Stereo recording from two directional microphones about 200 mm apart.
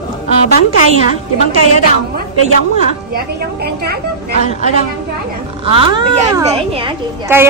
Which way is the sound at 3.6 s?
50° right (ahead or behind).